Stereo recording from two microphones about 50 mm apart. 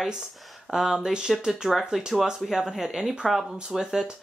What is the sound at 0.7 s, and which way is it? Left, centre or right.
Speech, centre.